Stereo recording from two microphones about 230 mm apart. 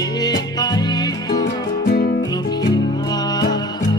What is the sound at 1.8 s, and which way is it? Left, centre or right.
Music, left.